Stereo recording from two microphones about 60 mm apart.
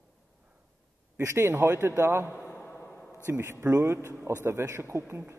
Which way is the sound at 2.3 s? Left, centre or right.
Left.